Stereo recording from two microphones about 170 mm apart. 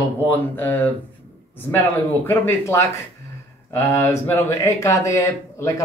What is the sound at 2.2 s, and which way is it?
Speech, 15° left (ahead or behind).